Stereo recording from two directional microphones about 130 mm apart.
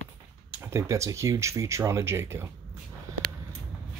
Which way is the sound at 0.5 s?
20° right (ahead or behind).